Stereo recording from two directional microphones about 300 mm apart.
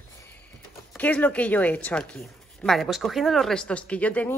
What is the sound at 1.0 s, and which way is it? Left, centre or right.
A woman's voice, centre.